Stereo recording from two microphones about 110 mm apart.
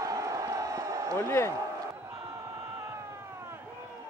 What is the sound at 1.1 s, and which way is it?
Speech, 25° left (ahead or behind).